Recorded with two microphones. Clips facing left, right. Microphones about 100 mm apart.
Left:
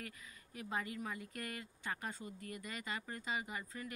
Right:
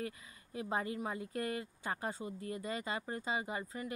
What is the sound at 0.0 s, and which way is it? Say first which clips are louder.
Speech: right 8 dB; 25° right (ahead or behind).